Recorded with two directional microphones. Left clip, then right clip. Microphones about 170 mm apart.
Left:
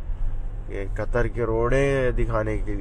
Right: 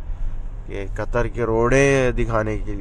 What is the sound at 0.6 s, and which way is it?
Speech, 15° right (ahead or behind).